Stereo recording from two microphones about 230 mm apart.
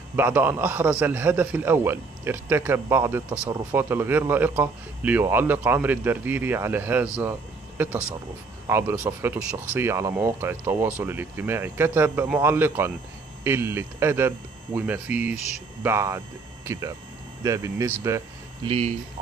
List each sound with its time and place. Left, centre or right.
0.1 s a man's voice: centre
18.7 s speech: right